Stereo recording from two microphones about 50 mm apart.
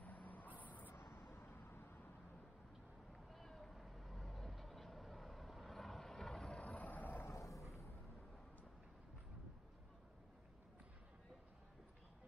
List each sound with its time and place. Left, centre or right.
0.0 s vehicle: left
0.9 s vehicle: left
3.3 s a sound: centre
3.7 s vehicle: centre
6.6 s boat: left
7.2 s a sound: left